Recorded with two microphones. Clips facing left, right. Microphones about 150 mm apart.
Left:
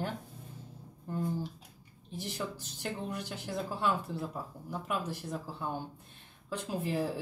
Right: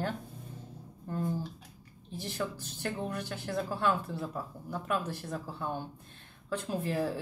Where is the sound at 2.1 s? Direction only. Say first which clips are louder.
Right 2 dB; 15° left (ahead or behind).